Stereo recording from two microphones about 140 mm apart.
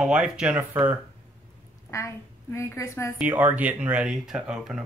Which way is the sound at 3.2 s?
15° right (ahead or behind).